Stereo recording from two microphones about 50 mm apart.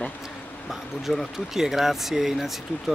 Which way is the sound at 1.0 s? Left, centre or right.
Centre.